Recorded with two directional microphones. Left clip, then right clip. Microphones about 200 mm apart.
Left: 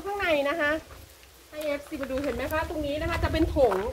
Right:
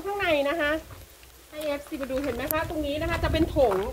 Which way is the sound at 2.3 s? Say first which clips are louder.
Right 1 dB; 15° left (ahead or behind).